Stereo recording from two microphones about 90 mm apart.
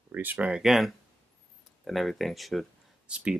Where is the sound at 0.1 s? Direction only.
20° right (ahead or behind).